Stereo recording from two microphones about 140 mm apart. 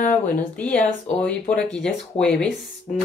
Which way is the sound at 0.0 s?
55° left (ahead or behind).